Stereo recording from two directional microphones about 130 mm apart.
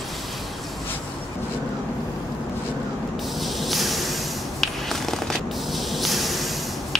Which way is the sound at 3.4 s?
Centre (ahead or behind).